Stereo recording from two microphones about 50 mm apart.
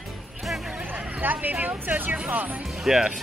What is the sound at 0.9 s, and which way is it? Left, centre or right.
Speech, right.